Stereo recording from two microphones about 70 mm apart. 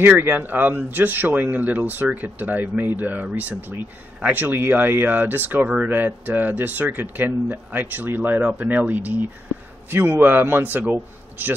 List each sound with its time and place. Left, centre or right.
0.0 s speech: right